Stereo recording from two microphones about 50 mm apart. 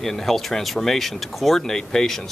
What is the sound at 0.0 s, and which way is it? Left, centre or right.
Speech, centre.